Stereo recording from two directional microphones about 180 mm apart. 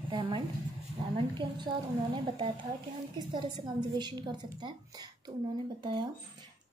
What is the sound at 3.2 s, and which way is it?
Speech, 25° right (ahead or behind).